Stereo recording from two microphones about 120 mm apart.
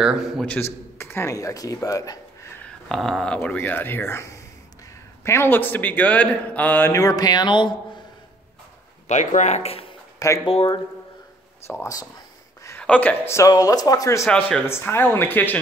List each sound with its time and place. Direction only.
0.0 s a man's voice: 5° right (ahead or behind)
0.9 s speech: 20° left (ahead or behind)
2.6 s a sound: 5° left (ahead or behind)
3.3 s a man's voice: 15° left (ahead or behind)
6.9 s speech: 30° left (ahead or behind)
9.0 s speech: 85° left; by 9.8 s 55° left (ahead or behind)
10.1 s speech: 25° left (ahead or behind)
10.4 s speech: 50° left (ahead or behind)
11.6 s speech: 20° left (ahead or behind)
12.6 s speech: 15° left (ahead or behind); by 14.2 s 30° left (ahead or behind)
14.7 s a man's voice: 20° left (ahead or behind)